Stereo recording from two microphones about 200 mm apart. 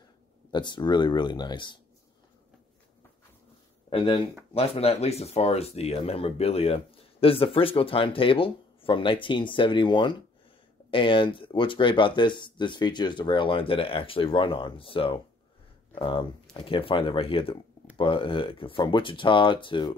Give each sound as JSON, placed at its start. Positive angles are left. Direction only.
{"t": 0.5, "sound": "speech", "side_deg": 20}
{"t": 3.9, "sound": "speech", "side_deg": 25}